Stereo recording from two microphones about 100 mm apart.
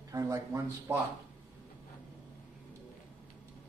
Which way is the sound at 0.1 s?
35° right (ahead or behind).